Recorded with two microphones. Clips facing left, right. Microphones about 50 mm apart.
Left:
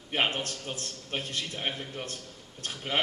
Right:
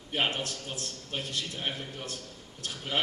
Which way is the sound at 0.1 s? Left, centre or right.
Left.